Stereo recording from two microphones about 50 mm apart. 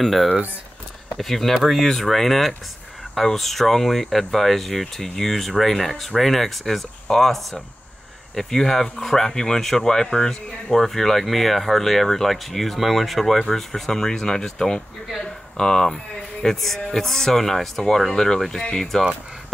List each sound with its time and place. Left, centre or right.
0.0 s speech: centre
15.0 s a sound: centre
16.4 s speech: centre